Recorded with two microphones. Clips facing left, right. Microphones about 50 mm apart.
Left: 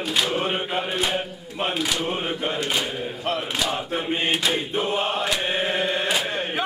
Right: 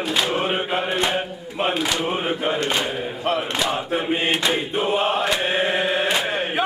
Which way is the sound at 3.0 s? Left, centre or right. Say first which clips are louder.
Right 3 dB; centre.